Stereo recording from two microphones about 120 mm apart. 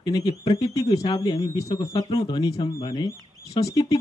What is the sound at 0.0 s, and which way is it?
Speech, 35° left (ahead or behind).